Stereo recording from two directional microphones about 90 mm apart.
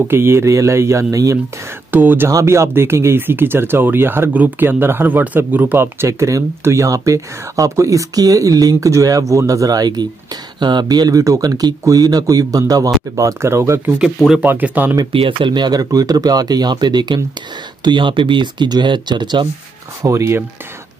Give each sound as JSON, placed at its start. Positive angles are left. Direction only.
{"t": 0.1, "sound": "speech", "side_deg": -25}
{"t": 1.9, "sound": "speech", "side_deg": -20}
{"t": 2.2, "sound": "speech", "side_deg": -30}
{"t": 13.9, "sound": "speech", "side_deg": -5}
{"t": 14.4, "sound": "speech", "side_deg": -20}
{"t": 15.1, "sound": "speech", "side_deg": -75}
{"t": 17.8, "sound": "speech", "side_deg": -65}
{"t": 20.1, "sound": "speech", "side_deg": -35}